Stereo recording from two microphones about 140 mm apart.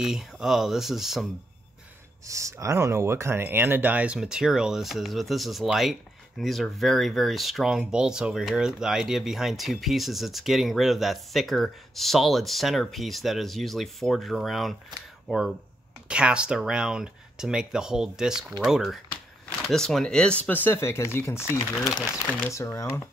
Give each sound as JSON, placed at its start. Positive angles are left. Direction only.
{"t": 0.0, "sound": "speech", "side_deg": -5}
{"t": 2.2, "sound": "speech", "side_deg": -20}